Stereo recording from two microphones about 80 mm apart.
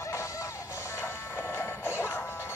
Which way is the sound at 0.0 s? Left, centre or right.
Left.